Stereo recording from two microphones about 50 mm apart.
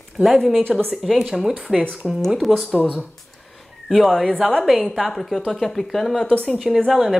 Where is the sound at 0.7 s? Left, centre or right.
Centre.